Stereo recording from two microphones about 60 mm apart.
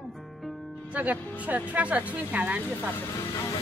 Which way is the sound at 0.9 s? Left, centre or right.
Right.